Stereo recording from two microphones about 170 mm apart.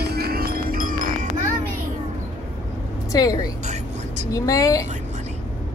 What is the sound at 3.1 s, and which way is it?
A woman's voice, 20° left (ahead or behind).